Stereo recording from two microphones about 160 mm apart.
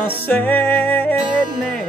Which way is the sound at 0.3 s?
10° left (ahead or behind).